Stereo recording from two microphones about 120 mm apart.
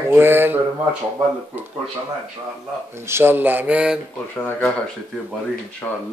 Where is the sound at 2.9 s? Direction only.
20° right (ahead or behind).